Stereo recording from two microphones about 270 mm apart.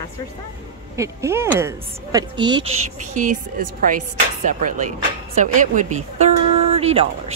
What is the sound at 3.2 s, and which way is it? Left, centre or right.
Speech, right.